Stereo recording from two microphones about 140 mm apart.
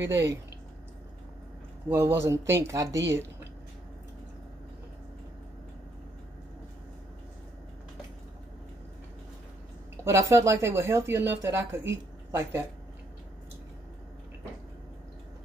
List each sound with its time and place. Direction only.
0.0 s speech: 20° right (ahead or behind)
1.9 s speech: 15° right (ahead or behind)
10.0 s speech: 20° right (ahead or behind)